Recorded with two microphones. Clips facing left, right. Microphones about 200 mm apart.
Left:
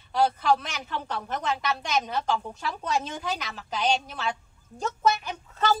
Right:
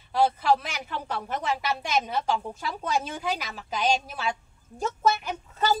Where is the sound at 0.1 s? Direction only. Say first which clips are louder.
Right 1 dB; 5° right (ahead or behind).